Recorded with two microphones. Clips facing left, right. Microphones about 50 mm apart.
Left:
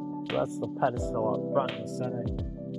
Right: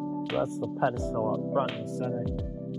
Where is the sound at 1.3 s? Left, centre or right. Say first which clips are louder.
Even; centre.